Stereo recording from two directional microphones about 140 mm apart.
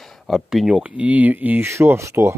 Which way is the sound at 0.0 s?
Centre (ahead or behind).